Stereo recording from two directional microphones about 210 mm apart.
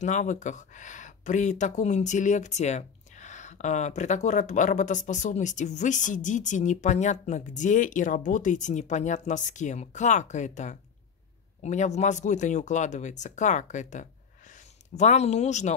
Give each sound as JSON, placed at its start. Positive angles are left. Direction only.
{"t": 0.0, "sound": "speech", "side_deg": 35}